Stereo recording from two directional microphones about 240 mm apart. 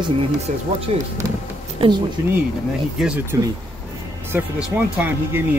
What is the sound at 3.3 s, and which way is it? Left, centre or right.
Speech, centre.